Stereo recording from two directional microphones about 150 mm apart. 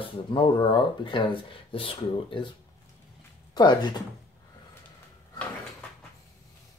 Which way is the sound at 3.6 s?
30° left (ahead or behind).